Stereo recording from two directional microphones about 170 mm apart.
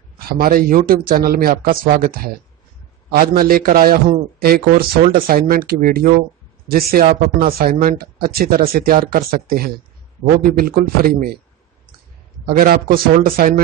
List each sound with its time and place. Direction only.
0.2 s speech: 60° right (ahead or behind)
12.4 s speech: 60° right (ahead or behind)